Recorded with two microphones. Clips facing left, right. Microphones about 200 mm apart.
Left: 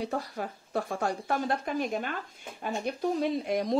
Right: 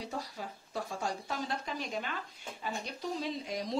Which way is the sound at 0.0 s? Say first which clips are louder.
Left 7 dB; 60° left (ahead or behind).